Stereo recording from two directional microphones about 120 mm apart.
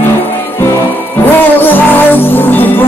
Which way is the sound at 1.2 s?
15° left (ahead or behind).